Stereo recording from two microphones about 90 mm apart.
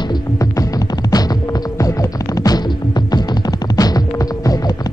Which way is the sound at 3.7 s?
45° left (ahead or behind).